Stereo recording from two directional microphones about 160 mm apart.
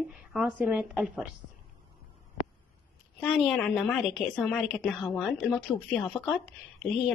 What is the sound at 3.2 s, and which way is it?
A woman's voice, centre (ahead or behind).